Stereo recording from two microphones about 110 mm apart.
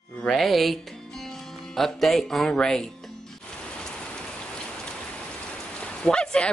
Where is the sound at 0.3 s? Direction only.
Centre (ahead or behind).